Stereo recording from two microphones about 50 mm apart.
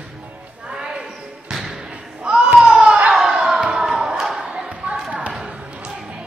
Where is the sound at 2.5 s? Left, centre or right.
Centre.